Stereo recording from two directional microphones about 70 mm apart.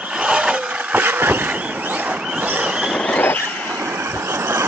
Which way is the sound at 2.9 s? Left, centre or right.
Centre.